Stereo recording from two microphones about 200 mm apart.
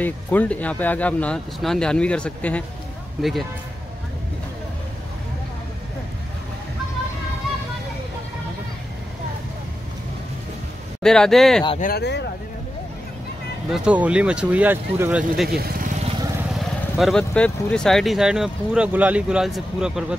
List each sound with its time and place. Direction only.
0.0 s speech: 10° left (ahead or behind)
11.0 s speech: 5° left (ahead or behind)
11.8 s speech: 55° left (ahead or behind)
13.7 s speech: 5° right (ahead or behind)
15.4 s speech: 50° right (ahead or behind)
16.5 s speech: centre (ahead or behind)